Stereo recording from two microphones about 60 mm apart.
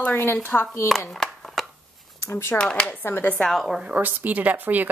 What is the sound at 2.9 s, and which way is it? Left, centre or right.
Speech, left.